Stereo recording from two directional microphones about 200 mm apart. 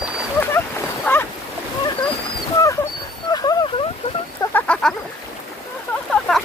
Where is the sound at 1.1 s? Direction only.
10° left (ahead or behind).